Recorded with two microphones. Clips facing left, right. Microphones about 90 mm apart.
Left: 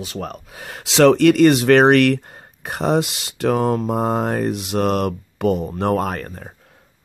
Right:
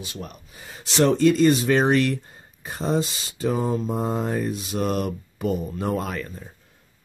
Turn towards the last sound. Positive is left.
turn(degrees=55)  # may be behind; listen again after turning